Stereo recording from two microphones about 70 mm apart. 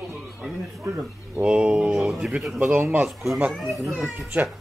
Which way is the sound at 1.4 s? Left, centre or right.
Centre.